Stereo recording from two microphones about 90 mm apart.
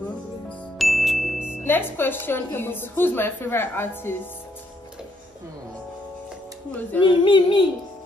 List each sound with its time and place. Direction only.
0.7 s music: centre (ahead or behind)
1.6 s a woman's voice: 25° left (ahead or behind)
6.7 s a woman's voice: 20° left (ahead or behind)
7.0 s speech: 65° left (ahead or behind)